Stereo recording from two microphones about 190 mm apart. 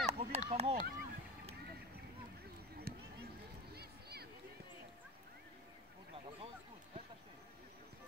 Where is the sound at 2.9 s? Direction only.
55° right (ahead or behind).